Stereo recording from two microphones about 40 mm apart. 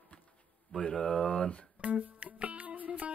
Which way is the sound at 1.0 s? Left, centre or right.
Left.